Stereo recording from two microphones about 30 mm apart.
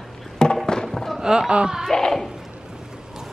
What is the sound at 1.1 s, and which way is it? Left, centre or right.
Speech, right.